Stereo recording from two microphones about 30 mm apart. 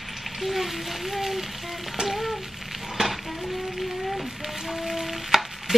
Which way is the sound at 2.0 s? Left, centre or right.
Centre.